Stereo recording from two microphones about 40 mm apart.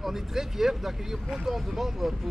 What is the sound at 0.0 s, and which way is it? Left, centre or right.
Speech, centre.